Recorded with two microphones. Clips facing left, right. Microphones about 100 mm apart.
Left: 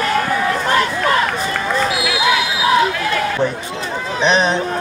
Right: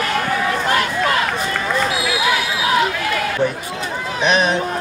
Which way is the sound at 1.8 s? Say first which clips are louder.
Left 1 dB; centre (ahead or behind).